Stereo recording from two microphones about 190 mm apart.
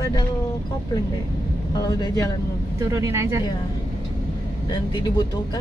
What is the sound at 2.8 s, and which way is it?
Speech, 15° right (ahead or behind).